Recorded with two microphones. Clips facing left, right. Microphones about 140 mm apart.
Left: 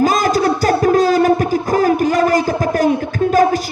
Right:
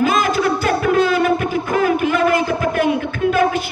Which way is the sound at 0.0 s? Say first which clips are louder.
Left 2 dB; 40° left (ahead or behind).